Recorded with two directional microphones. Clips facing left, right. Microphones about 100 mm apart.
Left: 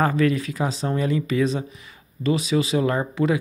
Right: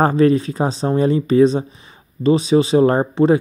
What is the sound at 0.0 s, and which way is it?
Speech, 30° right (ahead or behind).